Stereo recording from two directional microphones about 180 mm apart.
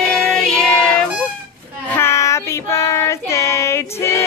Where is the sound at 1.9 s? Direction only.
15° left (ahead or behind).